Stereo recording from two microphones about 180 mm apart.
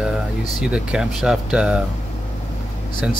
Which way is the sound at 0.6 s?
5° right (ahead or behind).